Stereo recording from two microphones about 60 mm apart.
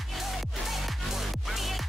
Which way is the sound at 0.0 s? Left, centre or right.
Centre.